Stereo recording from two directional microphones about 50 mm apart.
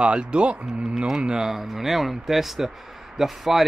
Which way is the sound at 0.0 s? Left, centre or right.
Right.